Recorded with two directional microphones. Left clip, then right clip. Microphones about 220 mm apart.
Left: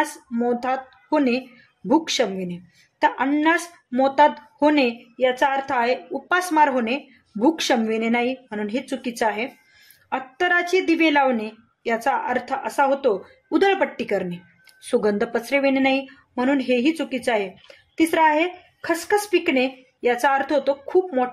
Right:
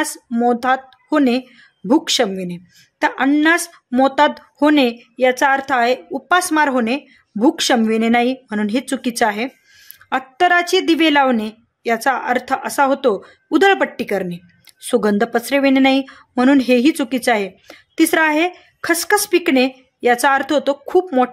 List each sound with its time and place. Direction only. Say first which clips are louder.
0.0 s speech: right 5 dB; 35° right (ahead or behind)